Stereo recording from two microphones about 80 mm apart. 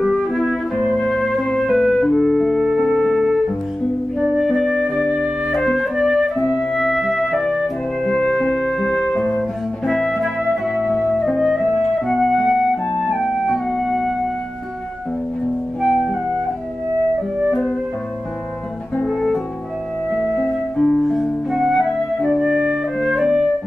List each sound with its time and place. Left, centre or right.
0.0 s music: centre
4.2 s flute: centre
9.1 s music: centre
9.8 s music: centre
17.5 s music: centre
19.0 s music: centre